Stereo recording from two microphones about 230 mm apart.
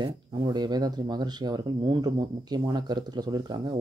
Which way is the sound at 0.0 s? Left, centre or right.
Centre.